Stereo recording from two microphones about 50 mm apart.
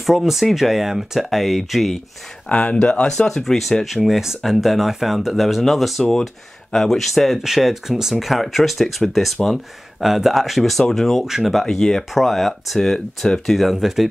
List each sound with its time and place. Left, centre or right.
0.0 s speech: centre
2.5 s speech: left
3.1 s speech: centre
7.4 s speech: centre
11.2 s speech: centre
11.5 s speech: centre